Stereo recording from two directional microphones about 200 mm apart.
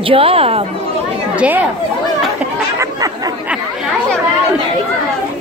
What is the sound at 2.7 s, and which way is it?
Chatter, 15° right (ahead or behind).